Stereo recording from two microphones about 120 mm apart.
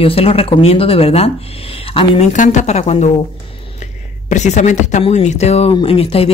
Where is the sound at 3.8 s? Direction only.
85° left.